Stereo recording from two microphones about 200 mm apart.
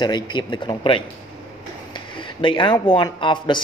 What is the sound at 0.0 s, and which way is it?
Speech, 20° left (ahead or behind).